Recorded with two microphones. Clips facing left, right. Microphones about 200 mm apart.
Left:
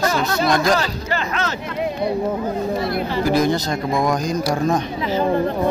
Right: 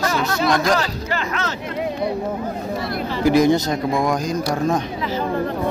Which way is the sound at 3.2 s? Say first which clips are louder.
Right 4 dB; 15° right (ahead or behind).